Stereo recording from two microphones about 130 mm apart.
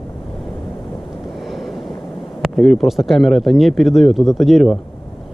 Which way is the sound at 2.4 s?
Centre (ahead or behind).